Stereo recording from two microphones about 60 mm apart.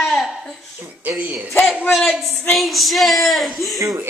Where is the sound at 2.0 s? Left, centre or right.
Centre.